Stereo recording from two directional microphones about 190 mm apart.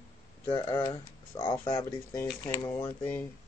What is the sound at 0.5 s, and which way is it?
Speech, 20° left (ahead or behind).